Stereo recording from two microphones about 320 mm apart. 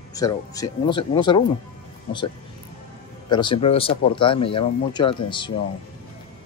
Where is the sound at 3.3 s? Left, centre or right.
Centre.